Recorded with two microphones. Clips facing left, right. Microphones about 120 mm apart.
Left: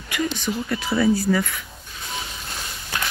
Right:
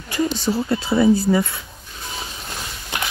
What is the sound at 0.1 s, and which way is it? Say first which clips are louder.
Speech: right 4 dB; 30° right (ahead or behind).